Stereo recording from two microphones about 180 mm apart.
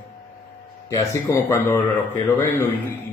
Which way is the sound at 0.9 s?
15° left (ahead or behind).